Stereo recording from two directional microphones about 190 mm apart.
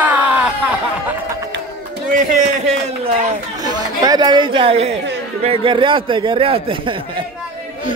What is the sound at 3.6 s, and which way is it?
Speech, 20° right (ahead or behind).